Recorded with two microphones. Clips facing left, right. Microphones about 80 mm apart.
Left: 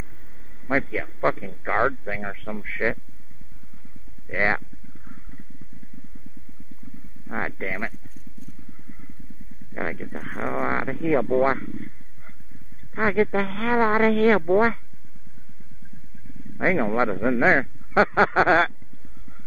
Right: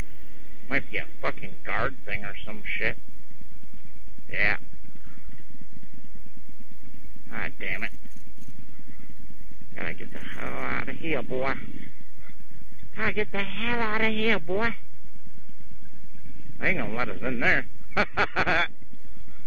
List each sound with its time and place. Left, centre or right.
0.7 s speech: left
4.3 s a sound: left
7.2 s speech: left
9.8 s speech: left
12.9 s speech: left
16.5 s speech: left